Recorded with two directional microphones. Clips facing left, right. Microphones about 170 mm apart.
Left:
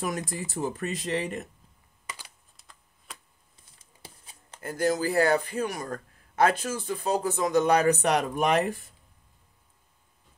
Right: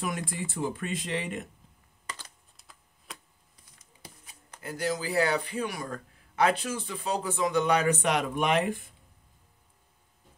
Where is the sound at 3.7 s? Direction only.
30° left (ahead or behind).